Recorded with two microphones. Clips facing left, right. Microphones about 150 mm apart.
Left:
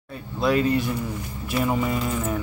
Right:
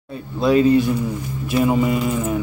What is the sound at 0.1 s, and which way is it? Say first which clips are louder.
Speech: right 5 dB; 25° right (ahead or behind).